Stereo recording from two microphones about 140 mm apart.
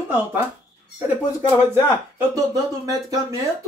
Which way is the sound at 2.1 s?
25° right (ahead or behind).